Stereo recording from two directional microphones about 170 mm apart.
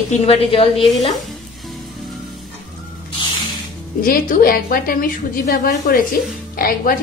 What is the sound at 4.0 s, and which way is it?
A woman's voice, 55° left (ahead or behind).